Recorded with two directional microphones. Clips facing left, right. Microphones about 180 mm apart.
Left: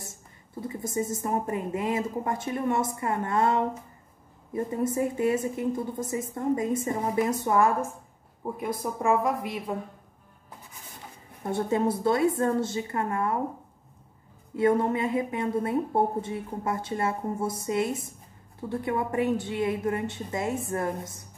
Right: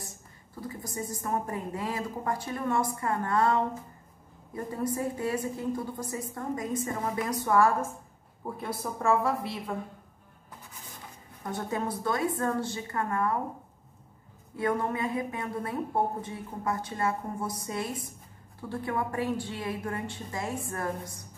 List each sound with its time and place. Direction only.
0.0 s a woman's voice: 25° left (ahead or behind)
11.4 s a woman's voice: 25° left (ahead or behind)
14.6 s a woman's voice: 25° left (ahead or behind)